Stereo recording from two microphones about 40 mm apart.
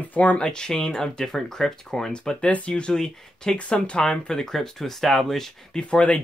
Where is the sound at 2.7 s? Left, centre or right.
Left.